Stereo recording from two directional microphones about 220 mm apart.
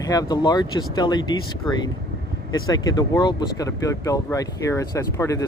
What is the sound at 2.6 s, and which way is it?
Speech, 15° left (ahead or behind).